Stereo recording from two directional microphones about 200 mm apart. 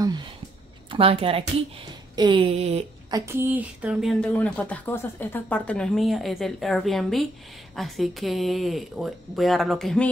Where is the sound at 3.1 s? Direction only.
15° right (ahead or behind).